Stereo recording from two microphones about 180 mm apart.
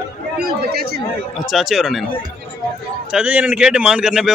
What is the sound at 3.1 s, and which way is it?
Speech, 5° right (ahead or behind).